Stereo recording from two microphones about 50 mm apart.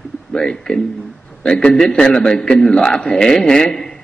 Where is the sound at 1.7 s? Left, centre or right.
Centre.